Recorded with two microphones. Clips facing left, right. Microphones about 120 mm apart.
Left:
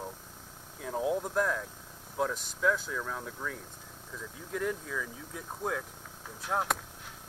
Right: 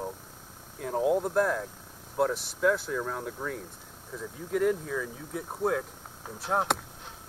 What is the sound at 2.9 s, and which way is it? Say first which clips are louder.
Speech: right 5 dB; 25° right (ahead or behind).